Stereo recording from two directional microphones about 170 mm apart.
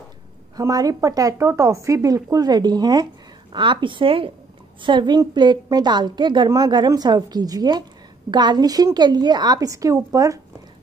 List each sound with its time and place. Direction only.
0.6 s a woman's voice: 20° right (ahead or behind)